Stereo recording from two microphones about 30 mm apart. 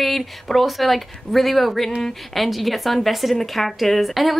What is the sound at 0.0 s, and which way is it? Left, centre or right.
A woman's voice, centre.